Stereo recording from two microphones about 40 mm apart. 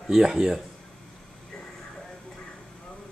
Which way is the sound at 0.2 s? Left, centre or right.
Centre.